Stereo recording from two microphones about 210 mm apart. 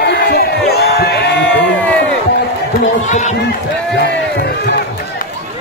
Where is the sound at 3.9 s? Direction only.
55° left (ahead or behind).